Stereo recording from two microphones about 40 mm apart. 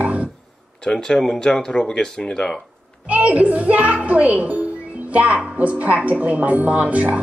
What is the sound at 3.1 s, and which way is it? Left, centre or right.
A woman's voice, right.